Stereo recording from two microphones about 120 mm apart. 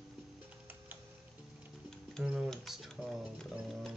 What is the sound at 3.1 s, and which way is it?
Music, centre (ahead or behind).